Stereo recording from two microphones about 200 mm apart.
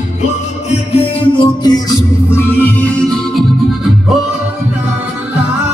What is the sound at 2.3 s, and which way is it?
Music, 10° left (ahead or behind).